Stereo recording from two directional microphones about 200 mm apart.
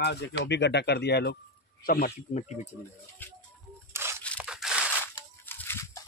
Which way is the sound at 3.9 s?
15° right (ahead or behind).